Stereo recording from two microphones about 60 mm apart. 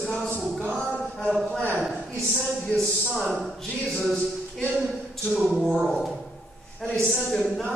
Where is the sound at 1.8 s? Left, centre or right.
Centre.